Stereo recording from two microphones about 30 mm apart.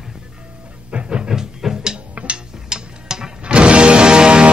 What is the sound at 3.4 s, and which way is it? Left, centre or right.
Music, right.